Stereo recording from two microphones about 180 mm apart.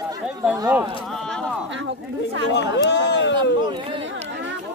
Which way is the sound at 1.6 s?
90° right.